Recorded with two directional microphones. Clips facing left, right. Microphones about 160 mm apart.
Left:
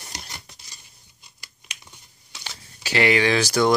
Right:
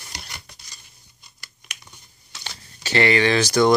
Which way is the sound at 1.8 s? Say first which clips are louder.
Right 1 dB; 5° left (ahead or behind).